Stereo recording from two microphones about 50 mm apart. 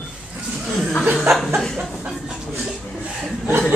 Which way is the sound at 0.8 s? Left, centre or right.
Centre.